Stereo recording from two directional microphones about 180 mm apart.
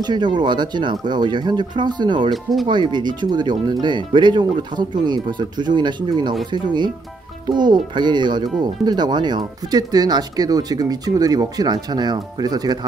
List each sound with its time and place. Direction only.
0.0 s speech: 25° right (ahead or behind)